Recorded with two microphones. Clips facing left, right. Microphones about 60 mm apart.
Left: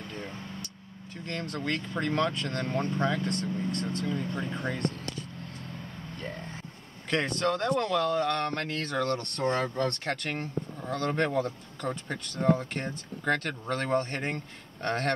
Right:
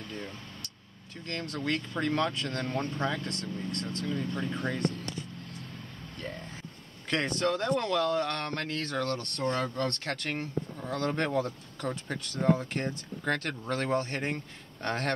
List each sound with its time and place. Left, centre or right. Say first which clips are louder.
1.2 s speech: left 1 dB; centre
4.6 s speech: even; centre
6.1 s a sound: left 1 dB; centre
7.1 s speech: left 1 dB; centre
9.4 s speech: left 2 dB; left
9.8 s speech: left 2 dB; centre